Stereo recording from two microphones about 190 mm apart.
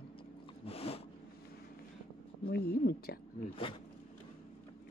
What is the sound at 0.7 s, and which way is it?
Zipper, 30° left (ahead or behind).